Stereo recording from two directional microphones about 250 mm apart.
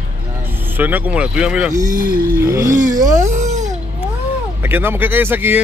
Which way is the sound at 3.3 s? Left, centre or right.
Right.